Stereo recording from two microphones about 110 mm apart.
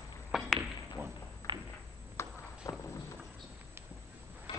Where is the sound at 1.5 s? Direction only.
45° right (ahead or behind).